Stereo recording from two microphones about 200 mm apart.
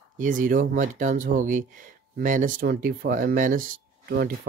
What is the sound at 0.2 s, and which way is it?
Speech, 40° right (ahead or behind).